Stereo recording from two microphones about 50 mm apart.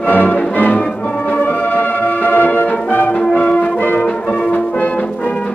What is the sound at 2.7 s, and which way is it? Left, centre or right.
Music, left.